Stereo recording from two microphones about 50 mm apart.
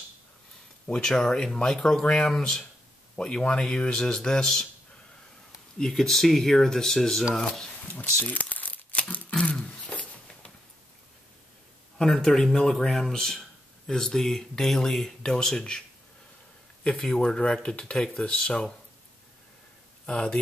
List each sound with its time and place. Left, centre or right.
0.8 s speech: centre
5.8 s speech: centre
7.9 s speech: left
9.4 s beatboxing: left
12.0 s speech: centre
16.8 s speech: centre
20.1 s speech: left